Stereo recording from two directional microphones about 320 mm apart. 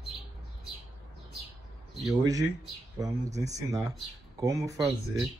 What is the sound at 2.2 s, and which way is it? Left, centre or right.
A man's voice, centre.